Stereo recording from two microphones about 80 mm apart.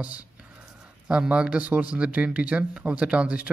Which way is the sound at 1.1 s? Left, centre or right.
Centre.